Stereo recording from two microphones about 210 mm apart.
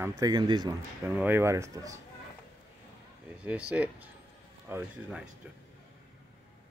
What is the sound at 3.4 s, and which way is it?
Speech, 5° right (ahead or behind).